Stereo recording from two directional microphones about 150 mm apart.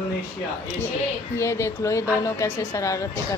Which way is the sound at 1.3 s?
20° left (ahead or behind).